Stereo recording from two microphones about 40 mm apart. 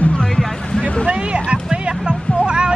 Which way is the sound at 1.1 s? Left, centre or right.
Right.